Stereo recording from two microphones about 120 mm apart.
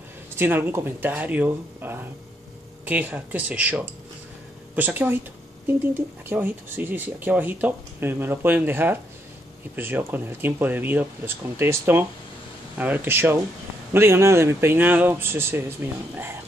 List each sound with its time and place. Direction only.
0.4 s speech: 15° right (ahead or behind)